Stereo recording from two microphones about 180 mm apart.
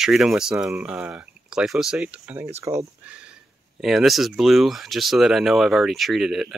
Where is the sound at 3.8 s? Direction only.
Centre (ahead or behind).